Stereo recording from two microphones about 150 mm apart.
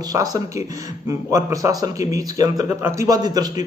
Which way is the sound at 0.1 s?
25° right (ahead or behind).